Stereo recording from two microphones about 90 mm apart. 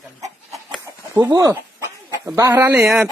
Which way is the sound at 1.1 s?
35° right (ahead or behind).